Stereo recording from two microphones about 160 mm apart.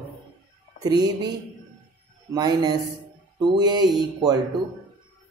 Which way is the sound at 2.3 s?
25° right (ahead or behind).